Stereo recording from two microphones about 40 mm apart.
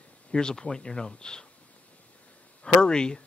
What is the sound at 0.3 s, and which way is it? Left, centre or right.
Speech, centre.